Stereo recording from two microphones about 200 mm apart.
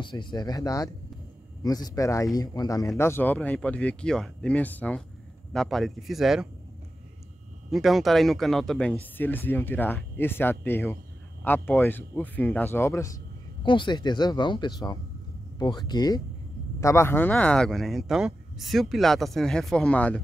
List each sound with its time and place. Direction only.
0.0 s a man's voice: 25° left (ahead or behind); by 6.5 s centre (ahead or behind)
7.7 s a man's voice: centre (ahead or behind)